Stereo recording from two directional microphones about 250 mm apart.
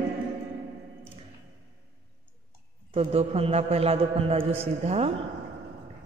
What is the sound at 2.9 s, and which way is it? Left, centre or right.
A man's voice, right.